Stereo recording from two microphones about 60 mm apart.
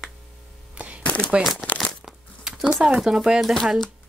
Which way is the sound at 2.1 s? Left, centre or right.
Centre.